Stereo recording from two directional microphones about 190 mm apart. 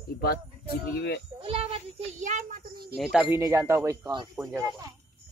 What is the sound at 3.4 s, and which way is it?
Speech, 15° right (ahead or behind).